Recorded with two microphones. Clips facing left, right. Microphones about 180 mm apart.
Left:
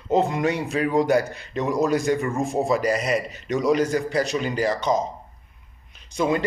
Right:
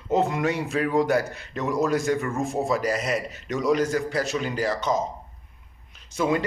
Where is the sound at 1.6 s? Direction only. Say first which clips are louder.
Left 2 dB; 15° left (ahead or behind).